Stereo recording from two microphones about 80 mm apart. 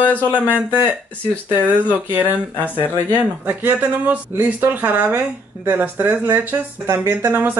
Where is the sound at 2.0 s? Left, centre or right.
Right.